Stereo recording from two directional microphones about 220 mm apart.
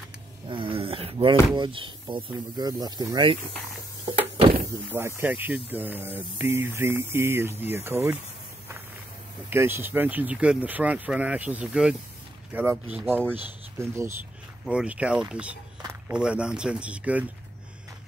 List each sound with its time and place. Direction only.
0.5 s a sound: 25° right (ahead or behind)
1.5 s speech: 20° right (ahead or behind)
4.9 s speech: 10° right (ahead or behind)
9.5 s speech: 10° right (ahead or behind)